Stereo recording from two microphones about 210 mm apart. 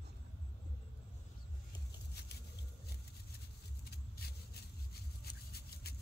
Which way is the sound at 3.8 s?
50° left (ahead or behind).